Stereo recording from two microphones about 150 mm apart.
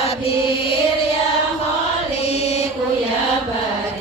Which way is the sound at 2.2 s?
45° left (ahead or behind).